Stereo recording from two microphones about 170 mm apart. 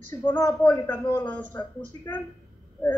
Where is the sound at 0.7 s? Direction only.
25° left (ahead or behind).